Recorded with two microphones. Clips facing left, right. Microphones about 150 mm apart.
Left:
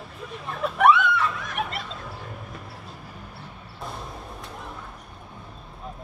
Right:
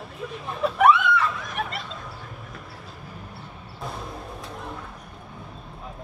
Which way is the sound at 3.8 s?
Centre (ahead or behind).